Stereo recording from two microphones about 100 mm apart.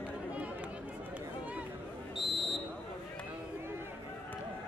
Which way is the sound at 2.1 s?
Centre (ahead or behind).